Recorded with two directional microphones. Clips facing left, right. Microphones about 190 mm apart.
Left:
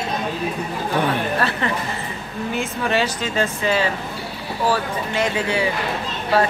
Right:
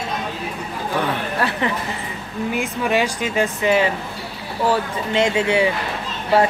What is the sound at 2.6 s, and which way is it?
Speech, 15° right (ahead or behind).